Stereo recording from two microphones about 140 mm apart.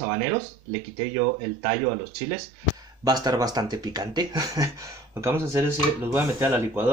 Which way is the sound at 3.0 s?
25° right (ahead or behind).